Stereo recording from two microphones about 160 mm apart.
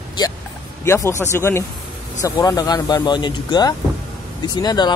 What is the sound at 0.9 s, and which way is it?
Speech, 15° left (ahead or behind).